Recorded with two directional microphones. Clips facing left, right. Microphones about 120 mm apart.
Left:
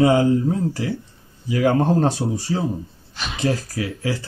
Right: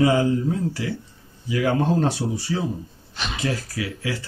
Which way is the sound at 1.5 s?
40° left (ahead or behind).